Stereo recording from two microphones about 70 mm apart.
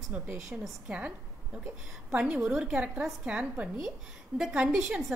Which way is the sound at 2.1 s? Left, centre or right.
Centre.